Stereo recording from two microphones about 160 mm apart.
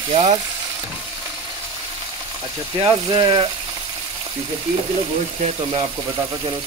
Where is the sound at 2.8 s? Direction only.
25° right (ahead or behind).